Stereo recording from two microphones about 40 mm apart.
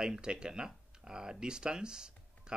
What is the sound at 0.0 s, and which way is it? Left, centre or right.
Speech, centre.